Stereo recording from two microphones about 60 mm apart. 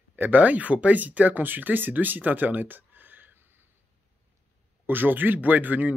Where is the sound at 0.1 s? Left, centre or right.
Right.